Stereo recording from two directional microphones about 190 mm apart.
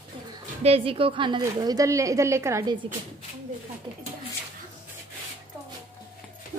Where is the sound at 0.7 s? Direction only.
30° right (ahead or behind).